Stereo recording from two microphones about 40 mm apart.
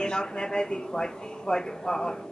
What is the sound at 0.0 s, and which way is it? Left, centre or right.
A woman's voice, centre.